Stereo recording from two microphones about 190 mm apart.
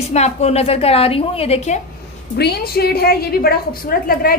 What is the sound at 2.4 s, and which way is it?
A woman's voice, 55° left (ahead or behind).